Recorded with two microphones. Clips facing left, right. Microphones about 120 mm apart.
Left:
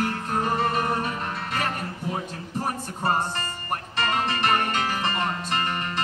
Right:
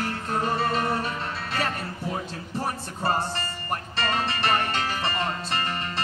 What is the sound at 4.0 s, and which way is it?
Music, 45° left (ahead or behind).